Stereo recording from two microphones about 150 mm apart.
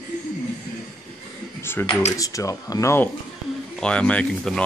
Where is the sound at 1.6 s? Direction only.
15° left (ahead or behind).